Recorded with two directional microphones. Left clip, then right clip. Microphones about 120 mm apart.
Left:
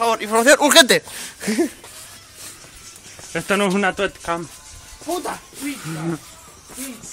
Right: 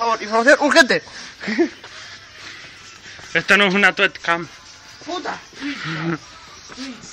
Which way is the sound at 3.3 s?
10° left (ahead or behind).